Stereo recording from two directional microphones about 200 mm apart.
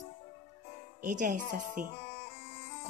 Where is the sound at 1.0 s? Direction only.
40° right (ahead or behind).